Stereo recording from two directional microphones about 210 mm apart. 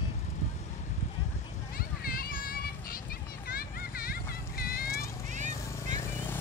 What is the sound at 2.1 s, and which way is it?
Children playing, 45° left (ahead or behind).